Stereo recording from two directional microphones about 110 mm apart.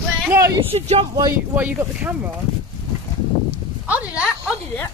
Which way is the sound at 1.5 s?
15° right (ahead or behind).